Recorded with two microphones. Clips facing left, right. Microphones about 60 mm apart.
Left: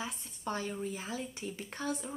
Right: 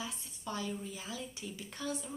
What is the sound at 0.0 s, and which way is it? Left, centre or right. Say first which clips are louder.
A woman's voice: left 3 dB; left.